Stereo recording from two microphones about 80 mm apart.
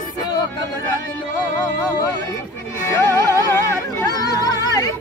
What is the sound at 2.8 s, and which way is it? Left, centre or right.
Music, left.